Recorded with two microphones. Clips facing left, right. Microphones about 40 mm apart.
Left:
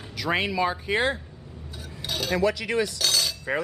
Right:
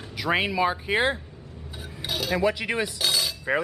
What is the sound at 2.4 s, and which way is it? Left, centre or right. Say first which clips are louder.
Cutlery: left 2 dB; centre.